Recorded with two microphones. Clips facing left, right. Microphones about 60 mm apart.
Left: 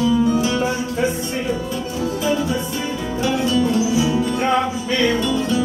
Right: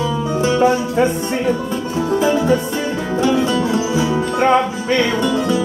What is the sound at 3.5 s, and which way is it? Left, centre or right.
Music, right.